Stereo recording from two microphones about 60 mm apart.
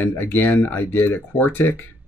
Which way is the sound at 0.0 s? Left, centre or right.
Left.